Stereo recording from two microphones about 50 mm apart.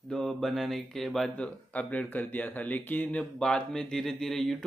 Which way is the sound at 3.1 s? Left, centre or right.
Centre.